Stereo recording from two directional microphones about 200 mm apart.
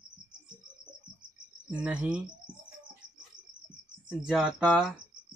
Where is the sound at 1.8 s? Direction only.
5° right (ahead or behind).